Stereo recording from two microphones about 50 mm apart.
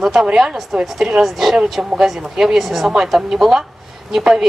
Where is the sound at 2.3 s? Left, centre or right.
Centre.